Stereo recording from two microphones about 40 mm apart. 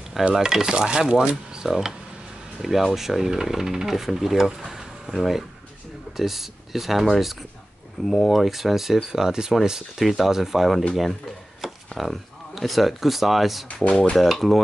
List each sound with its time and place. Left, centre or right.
0.4 s speech: centre
4.6 s a sound: centre
5.1 s speech: centre
8.1 s speech: centre
11.6 s a sound: centre
12.0 s speech: centre
13.8 s speech: left
14.1 s speech: centre